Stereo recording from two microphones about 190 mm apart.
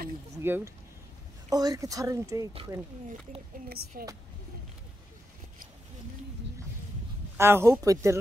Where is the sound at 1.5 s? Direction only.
20° right (ahead or behind).